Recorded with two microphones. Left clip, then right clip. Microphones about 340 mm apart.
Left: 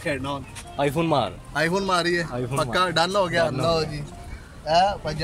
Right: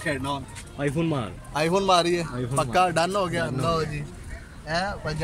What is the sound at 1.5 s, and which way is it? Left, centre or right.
A man's voice, centre.